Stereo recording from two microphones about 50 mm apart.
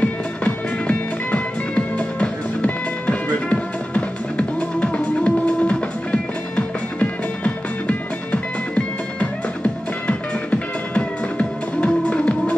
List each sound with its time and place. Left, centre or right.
0.0 s music: left